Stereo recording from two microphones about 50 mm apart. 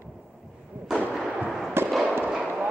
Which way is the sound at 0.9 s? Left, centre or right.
Centre.